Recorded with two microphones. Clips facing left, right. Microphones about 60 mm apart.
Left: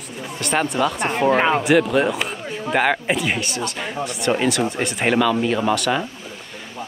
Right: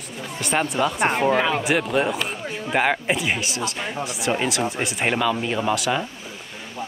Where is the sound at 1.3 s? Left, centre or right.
Left.